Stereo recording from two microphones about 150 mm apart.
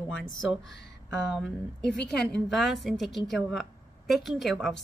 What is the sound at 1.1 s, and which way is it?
Speech, 5° left (ahead or behind).